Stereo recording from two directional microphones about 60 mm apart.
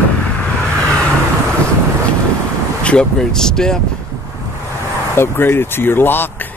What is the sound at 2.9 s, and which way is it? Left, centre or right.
Speech, centre.